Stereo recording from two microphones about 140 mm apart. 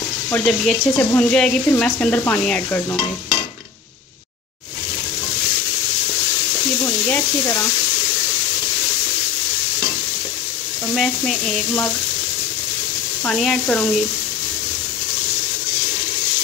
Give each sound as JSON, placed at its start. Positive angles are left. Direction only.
{"t": 0.3, "sound": "speech", "side_deg": 5}
{"t": 1.7, "sound": "stir", "side_deg": 10}
{"t": 7.1, "sound": "stir", "side_deg": 15}
{"t": 11.0, "sound": "speech", "side_deg": 5}
{"t": 13.2, "sound": "stir", "side_deg": 5}